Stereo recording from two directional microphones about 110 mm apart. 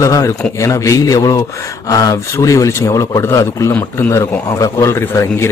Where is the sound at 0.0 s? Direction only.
30° left (ahead or behind).